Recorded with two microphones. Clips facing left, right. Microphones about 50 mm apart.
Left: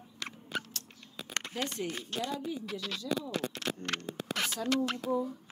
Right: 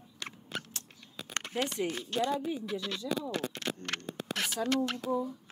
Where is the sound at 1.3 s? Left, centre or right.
Right.